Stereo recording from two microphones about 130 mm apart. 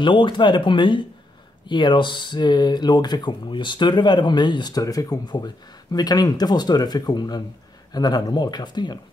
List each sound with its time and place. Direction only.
0.0 s speech: 40° left (ahead or behind)